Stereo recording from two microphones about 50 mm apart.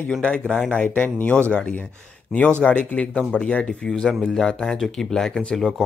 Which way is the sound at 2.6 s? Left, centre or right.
Left.